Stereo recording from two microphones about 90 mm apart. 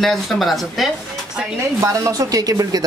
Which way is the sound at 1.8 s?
35° right (ahead or behind).